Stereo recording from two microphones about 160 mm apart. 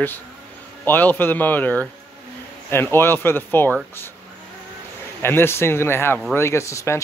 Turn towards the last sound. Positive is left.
turn(degrees=20)  # may be behind; listen again after turning